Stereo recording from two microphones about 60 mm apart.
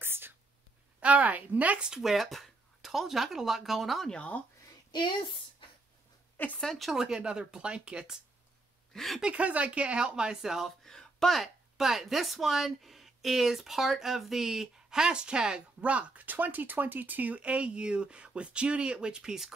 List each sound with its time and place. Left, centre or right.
0.0 s whispering: right
1.0 s a woman's voice: right
1.9 s speech: centre
4.1 s speech: centre
6.3 s a woman's voice: left
6.6 s speech: centre
6.9 s speech: centre
8.9 s speech: centre
9.2 s speech: right
10.8 s speech: centre